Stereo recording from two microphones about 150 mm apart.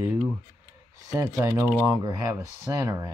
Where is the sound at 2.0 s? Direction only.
20° right (ahead or behind).